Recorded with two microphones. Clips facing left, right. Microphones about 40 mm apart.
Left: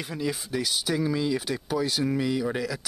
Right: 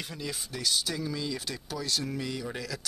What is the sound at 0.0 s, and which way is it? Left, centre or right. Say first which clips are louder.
Speech: left 7 dB; centre.